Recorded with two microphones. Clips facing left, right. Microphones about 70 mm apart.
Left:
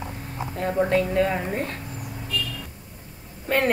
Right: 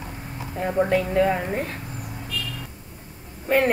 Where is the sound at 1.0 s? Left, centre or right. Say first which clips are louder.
Right 1 dB; right.